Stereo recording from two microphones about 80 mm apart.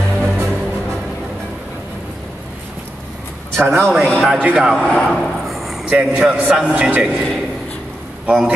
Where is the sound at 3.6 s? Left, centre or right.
Right.